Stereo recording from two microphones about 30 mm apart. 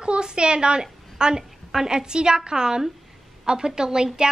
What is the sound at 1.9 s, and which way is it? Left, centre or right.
A woman's voice, right.